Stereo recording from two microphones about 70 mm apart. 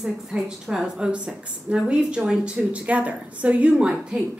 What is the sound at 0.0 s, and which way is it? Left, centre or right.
A woman's voice, centre.